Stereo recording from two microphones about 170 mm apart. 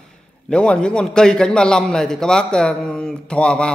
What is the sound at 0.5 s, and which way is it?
A man's voice, 5° left (ahead or behind).